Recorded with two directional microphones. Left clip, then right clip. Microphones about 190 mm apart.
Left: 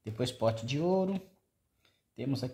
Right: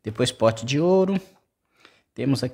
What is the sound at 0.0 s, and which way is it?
Speech, 40° right (ahead or behind).